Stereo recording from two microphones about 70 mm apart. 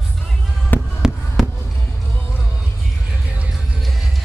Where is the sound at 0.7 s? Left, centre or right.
Left.